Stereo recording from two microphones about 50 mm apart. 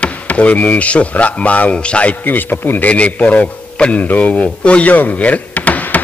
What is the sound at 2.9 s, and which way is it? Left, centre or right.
Speech, left.